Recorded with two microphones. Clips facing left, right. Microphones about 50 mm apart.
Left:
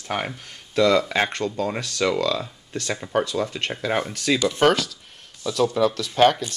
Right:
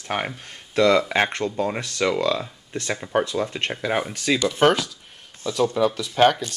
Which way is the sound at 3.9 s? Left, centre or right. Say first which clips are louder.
Left 1 dB; centre.